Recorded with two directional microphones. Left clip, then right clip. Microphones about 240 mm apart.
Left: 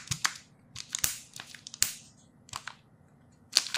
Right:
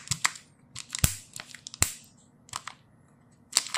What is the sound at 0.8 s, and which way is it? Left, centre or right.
Tearing, centre.